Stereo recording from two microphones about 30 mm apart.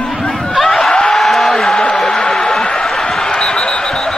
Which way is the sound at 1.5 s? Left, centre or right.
Left.